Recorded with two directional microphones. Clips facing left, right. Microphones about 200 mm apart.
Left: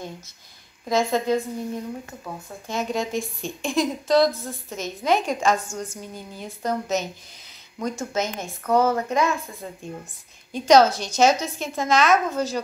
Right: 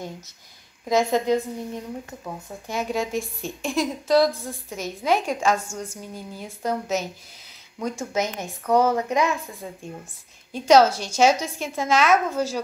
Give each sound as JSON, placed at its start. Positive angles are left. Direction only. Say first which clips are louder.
{"t": 0.8, "sound": "speech", "louder": "right 1 dB", "side_deg": -15}